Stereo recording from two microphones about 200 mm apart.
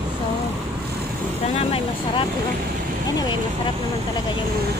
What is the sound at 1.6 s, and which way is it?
Vehicle, 30° left (ahead or behind).